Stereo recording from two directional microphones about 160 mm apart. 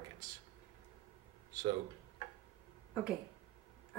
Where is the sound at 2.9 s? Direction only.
5° right (ahead or behind).